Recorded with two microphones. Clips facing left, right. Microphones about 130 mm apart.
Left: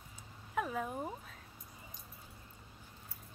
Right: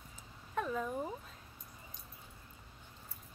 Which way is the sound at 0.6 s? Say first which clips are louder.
Right 1 dB; 10° left (ahead or behind).